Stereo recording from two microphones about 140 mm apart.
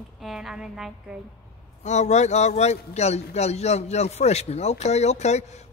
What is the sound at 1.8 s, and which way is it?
A man's voice, 55° left (ahead or behind).